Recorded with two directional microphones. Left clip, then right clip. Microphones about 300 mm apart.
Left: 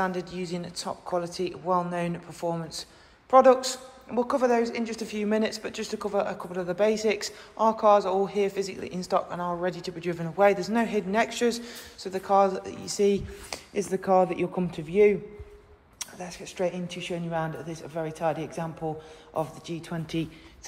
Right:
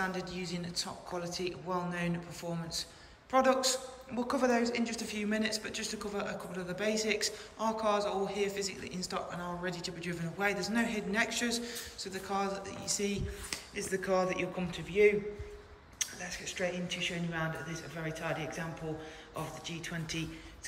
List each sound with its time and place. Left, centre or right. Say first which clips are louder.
0.0 s speech: left 7 dB; centre
16.2 s speech: left 9 dB; centre